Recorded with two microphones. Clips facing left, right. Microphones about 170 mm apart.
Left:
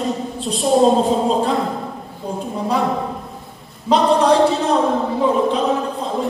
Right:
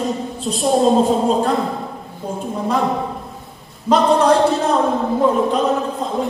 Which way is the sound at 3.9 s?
Centre (ahead or behind).